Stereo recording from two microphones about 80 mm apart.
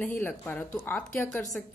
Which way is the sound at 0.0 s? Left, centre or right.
Left.